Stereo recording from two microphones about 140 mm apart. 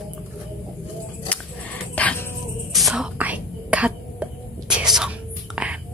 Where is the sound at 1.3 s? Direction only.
10° left (ahead or behind).